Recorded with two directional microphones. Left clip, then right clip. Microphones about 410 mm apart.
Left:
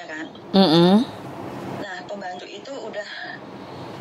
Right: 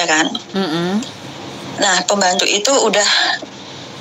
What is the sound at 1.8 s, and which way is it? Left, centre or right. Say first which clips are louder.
Speech: right 18 dB; right.